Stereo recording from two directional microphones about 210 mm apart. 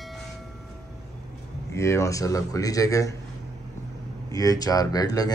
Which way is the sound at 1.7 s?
15° left (ahead or behind).